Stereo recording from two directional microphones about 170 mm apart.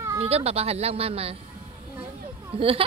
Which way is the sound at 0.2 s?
35° right (ahead or behind).